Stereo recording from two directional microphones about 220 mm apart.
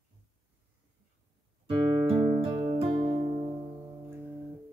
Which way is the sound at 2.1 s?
20° right (ahead or behind).